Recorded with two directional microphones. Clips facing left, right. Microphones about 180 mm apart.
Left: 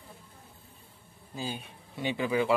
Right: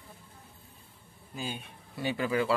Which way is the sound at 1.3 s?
30° left (ahead or behind).